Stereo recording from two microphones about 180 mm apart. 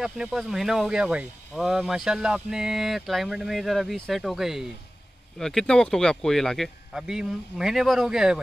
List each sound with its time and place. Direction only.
0.0 s speech: 5° right (ahead or behind)